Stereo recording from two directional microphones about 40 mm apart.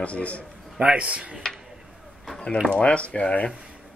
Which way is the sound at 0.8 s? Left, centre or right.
Right.